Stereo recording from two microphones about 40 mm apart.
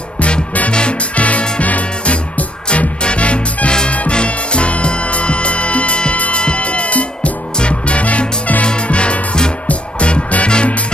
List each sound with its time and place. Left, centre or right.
0.7 s music: left